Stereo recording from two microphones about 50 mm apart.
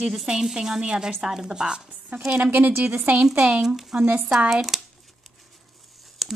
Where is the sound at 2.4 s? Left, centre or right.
Right.